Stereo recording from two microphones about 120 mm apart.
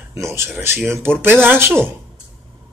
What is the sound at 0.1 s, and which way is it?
A man's voice, 25° right (ahead or behind).